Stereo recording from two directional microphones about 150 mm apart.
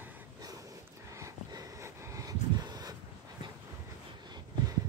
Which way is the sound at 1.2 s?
20° right (ahead or behind).